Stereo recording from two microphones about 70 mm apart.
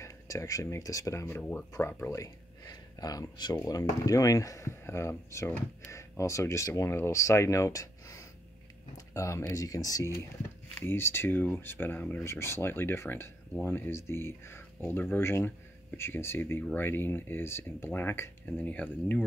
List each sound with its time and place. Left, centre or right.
0.0 s speech: left
1.7 s speech: left
2.6 s speech: left
3.6 s speech: left
10.7 s speech: left
12.2 s speech: left
18.4 s speech: left